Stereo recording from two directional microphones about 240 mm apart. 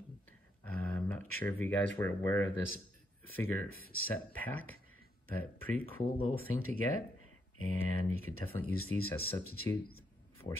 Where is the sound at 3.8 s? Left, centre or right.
Left.